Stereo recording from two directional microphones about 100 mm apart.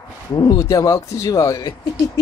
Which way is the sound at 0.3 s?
45° left (ahead or behind).